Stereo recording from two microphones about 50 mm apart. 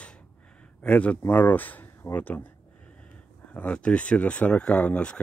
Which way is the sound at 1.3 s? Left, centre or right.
Left.